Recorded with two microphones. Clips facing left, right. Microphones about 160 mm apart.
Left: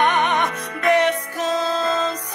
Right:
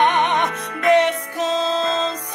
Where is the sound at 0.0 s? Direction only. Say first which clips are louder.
Right 1 dB; 20° right (ahead or behind).